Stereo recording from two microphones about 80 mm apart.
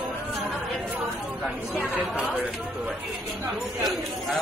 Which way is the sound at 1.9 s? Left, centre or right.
Centre.